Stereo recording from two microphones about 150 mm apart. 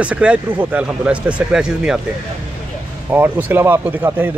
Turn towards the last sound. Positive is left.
turn(degrees=-15)  # may be behind; listen again after turning